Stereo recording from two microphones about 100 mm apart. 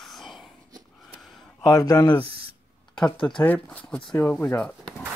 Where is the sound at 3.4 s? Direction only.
15° left (ahead or behind).